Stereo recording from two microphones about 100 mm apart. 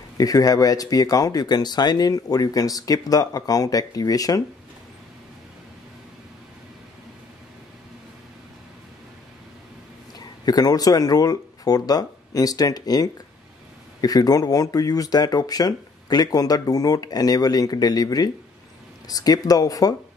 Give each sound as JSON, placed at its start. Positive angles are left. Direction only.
{"t": 0.2, "sound": "speech", "side_deg": 40}
{"t": 10.1, "sound": "speech", "side_deg": 40}